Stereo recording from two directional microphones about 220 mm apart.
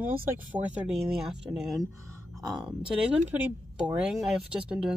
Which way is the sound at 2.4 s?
20° right (ahead or behind).